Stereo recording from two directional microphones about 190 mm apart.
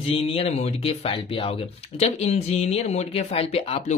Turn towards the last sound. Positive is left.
turn(degrees=35)  # may be behind; listen again after turning